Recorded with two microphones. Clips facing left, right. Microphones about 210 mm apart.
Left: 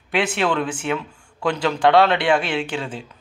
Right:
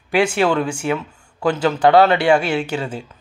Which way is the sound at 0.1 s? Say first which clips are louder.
Right 4 dB; 10° right (ahead or behind).